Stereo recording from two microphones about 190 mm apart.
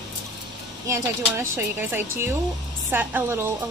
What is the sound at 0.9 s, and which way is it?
Speech, 15° right (ahead or behind).